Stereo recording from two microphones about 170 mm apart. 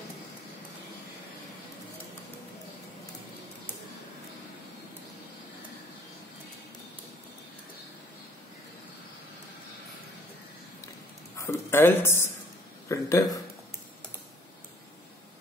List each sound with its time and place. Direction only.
11.3 s speech: 15° left (ahead or behind)